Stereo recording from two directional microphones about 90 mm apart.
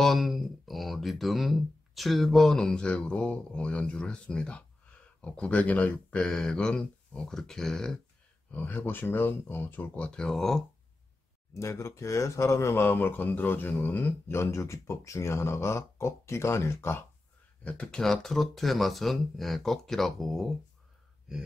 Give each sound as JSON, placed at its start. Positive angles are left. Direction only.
{"t": 0.0, "sound": "speech", "side_deg": 0}
{"t": 8.5, "sound": "speech", "side_deg": 20}
{"t": 11.5, "sound": "speech", "side_deg": 30}
{"t": 17.6, "sound": "speech", "side_deg": 10}
{"t": 21.3, "sound": "gasp", "side_deg": -5}